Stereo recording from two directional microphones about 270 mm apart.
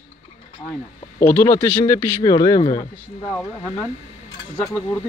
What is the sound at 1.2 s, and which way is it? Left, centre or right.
Speech, centre.